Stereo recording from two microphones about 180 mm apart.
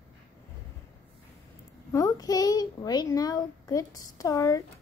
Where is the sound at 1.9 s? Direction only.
20° left (ahead or behind).